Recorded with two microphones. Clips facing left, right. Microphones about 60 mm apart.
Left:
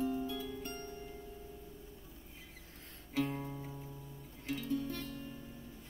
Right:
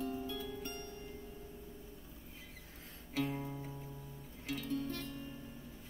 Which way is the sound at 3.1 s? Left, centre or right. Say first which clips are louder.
Left 1 dB; centre.